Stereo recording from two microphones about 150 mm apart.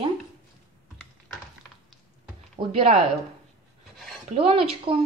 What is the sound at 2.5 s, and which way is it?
Speech, 40° right (ahead or behind).